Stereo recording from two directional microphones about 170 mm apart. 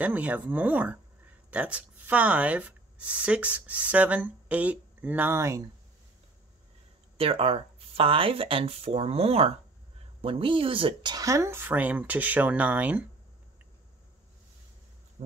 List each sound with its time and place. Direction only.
0.0 s speech: 10° right (ahead or behind)
7.2 s speech: 35° right (ahead or behind); by 13.0 s 10° right (ahead or behind)
15.2 s speech: 40° right (ahead or behind)